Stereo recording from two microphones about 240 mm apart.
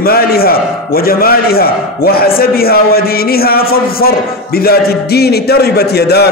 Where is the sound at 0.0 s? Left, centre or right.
Left.